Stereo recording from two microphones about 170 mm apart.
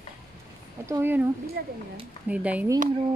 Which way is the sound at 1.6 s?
65° right (ahead or behind).